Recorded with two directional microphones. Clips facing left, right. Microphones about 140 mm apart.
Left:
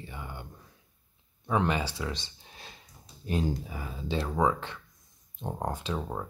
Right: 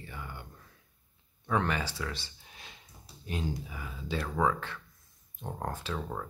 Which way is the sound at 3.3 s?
35° left (ahead or behind).